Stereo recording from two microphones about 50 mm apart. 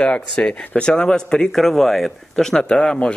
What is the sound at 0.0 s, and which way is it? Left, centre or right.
Speech, centre.